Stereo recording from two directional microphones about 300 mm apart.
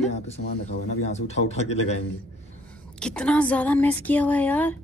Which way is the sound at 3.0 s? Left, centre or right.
Centre.